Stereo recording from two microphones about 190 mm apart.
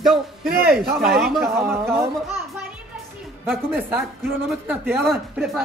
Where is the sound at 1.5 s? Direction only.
15° right (ahead or behind).